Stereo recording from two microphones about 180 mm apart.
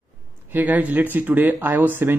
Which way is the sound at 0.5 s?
10° right (ahead or behind).